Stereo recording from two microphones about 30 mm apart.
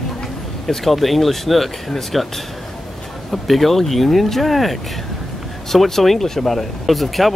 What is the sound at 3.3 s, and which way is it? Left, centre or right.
Speech, centre.